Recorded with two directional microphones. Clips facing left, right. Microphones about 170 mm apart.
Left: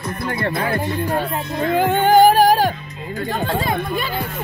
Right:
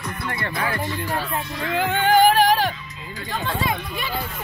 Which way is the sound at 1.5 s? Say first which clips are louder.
Left 7 dB; 45° left (ahead or behind).